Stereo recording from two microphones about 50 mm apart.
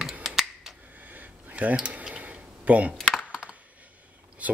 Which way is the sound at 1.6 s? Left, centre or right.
Right.